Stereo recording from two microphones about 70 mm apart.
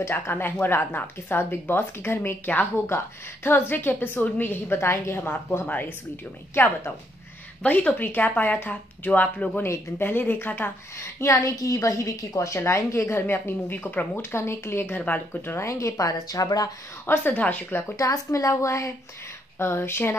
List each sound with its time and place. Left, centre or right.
0.0 s a woman's voice: left
7.6 s speech: left
9.6 s a woman's voice: left
14.3 s a woman's voice: left
17.0 s speech: left
17.9 s speech: left
19.6 s a woman's voice: left